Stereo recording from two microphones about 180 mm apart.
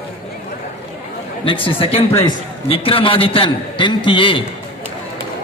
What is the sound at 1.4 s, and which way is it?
A man's voice, 30° left (ahead or behind).